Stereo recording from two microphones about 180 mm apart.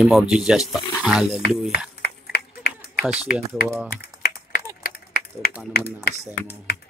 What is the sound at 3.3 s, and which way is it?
Speech, 55° left (ahead or behind).